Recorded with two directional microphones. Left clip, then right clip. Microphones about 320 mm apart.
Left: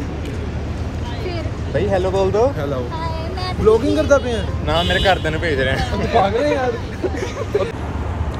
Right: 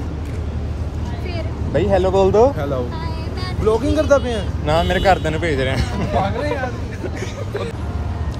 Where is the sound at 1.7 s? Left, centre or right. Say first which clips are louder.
Right 2 dB; right.